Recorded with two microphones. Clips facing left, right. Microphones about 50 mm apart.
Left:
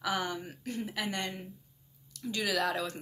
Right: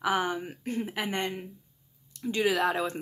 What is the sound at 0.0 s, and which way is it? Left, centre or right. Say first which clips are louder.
Speech: right 5 dB; right.